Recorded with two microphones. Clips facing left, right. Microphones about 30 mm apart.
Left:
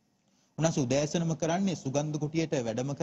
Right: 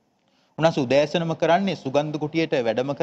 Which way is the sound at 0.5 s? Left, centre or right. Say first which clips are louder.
Right 9 dB; right.